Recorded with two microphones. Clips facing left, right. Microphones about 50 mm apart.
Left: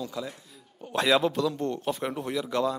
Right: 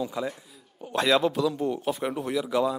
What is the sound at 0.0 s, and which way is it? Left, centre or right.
Speech, right.